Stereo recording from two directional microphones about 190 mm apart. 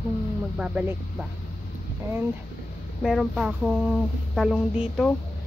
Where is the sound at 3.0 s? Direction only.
Centre (ahead or behind).